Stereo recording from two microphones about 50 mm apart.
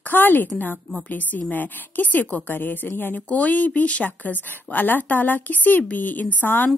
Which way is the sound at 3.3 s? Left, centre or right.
Left.